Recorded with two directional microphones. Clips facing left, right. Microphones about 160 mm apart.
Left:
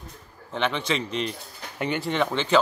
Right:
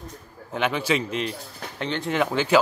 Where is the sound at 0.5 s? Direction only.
5° right (ahead or behind).